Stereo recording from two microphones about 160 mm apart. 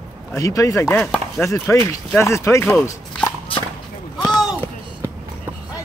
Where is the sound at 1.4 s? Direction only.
20° left (ahead or behind).